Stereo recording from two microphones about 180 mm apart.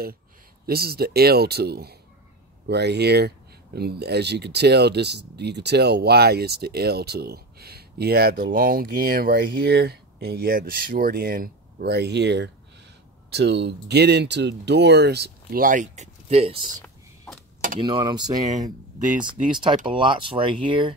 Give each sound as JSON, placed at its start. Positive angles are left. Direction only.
{"t": 0.7, "sound": "speech", "side_deg": -60}
{"t": 17.7, "sound": "speech", "side_deg": -25}
{"t": 19.5, "sound": "speech", "side_deg": -25}